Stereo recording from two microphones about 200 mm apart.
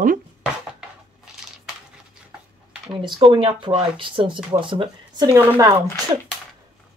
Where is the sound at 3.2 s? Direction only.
25° right (ahead or behind).